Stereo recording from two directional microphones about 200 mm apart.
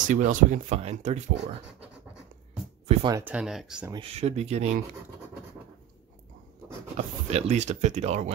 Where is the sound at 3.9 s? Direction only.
30° right (ahead or behind).